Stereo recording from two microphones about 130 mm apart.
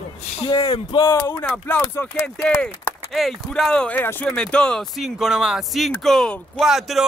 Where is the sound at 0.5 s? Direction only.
30° left (ahead or behind).